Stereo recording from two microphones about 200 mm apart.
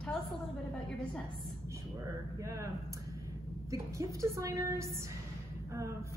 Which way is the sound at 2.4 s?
15° right (ahead or behind).